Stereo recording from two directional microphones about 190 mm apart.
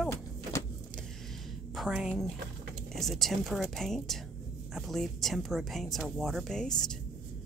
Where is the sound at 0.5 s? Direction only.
15° left (ahead or behind).